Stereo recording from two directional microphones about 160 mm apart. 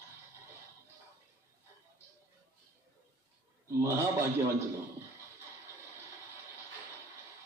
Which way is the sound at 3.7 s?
20° right (ahead or behind).